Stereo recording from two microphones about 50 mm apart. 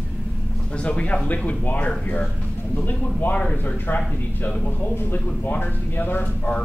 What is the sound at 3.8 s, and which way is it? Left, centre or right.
Speech, left.